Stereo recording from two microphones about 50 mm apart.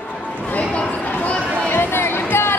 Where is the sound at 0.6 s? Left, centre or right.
Left.